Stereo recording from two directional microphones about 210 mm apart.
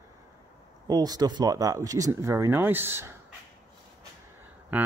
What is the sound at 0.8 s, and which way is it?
Speech, 20° right (ahead or behind).